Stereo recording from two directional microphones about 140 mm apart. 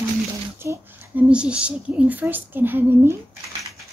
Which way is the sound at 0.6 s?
15° right (ahead or behind).